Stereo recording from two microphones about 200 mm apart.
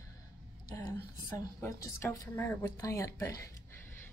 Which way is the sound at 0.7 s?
15° left (ahead or behind).